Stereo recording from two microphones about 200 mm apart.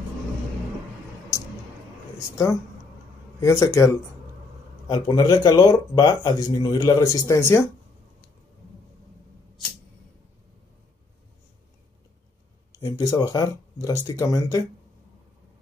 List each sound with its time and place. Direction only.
2.1 s speech: 15° left (ahead or behind)
12.7 s speech: 20° left (ahead or behind)